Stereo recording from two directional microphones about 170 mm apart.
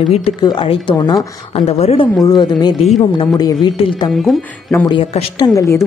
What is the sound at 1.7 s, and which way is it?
Speech, 40° left (ahead or behind).